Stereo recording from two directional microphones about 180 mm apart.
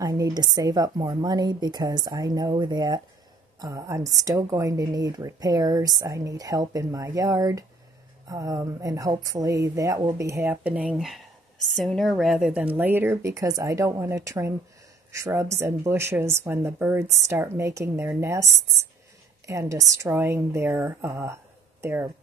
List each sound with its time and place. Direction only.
0.0 s a woman's voice: 20° right (ahead or behind)
10.4 s speech: 10° right (ahead or behind)